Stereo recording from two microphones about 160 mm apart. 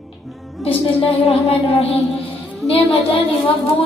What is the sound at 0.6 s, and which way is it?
A woman's voice, 35° left (ahead or behind).